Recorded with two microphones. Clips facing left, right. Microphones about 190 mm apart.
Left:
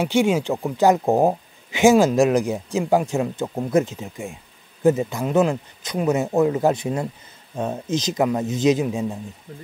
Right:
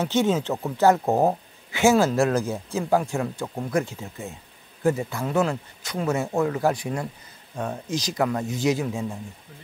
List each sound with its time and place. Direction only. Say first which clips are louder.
0.0 s speech: left 3 dB; 10° left (ahead or behind)